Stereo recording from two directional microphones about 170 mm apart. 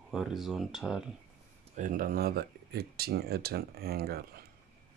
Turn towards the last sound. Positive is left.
turn(degrees=-65)  # may be behind; listen again after turning